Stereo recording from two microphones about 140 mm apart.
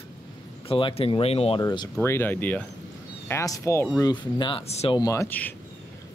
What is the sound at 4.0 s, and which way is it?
Speech, 30° left (ahead or behind).